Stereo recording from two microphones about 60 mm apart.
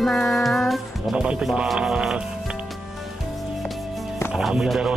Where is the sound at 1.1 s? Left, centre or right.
Centre.